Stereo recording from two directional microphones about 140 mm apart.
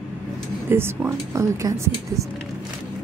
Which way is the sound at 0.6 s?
15° right (ahead or behind).